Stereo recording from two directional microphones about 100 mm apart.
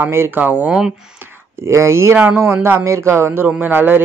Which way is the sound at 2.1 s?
15° right (ahead or behind).